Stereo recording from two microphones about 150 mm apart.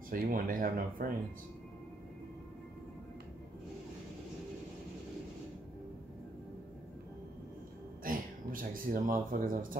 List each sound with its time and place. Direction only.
0.1 s speech: 65° right (ahead or behind)
8.0 s speech: 65° right (ahead or behind)